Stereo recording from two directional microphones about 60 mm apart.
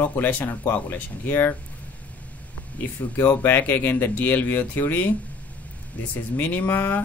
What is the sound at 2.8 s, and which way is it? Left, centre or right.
Speech, left.